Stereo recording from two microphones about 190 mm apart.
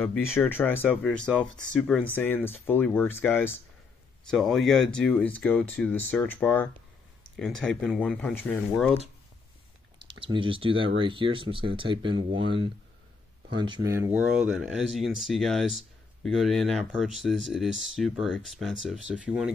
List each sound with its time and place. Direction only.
0.0 s speech: 5° left (ahead or behind)
10.0 s speech: 25° right (ahead or behind); by 19.5 s 5° right (ahead or behind)